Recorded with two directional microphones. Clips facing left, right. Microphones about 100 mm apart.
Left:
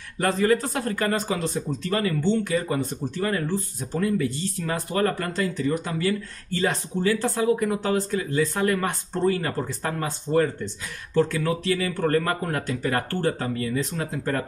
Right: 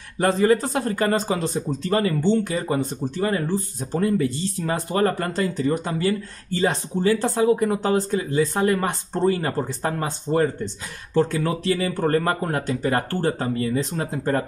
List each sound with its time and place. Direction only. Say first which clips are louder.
0.2 s speech: right 3 dB; 25° right (ahead or behind)